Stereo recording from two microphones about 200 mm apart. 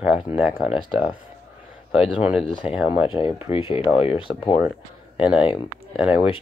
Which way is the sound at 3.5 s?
25° left (ahead or behind).